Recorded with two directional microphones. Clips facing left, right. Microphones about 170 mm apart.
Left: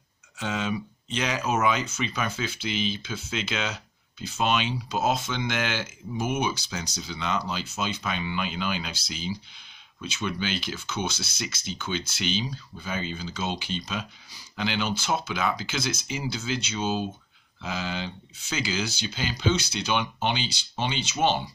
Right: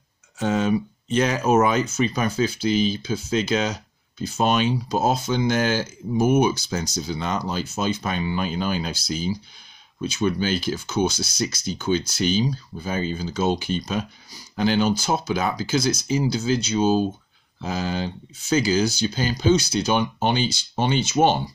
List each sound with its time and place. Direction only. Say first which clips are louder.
0.4 s speech: right 8 dB; 45° right (ahead or behind)